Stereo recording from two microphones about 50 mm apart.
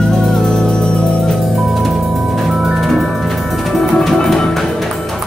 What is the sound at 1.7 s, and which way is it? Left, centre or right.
Music, centre.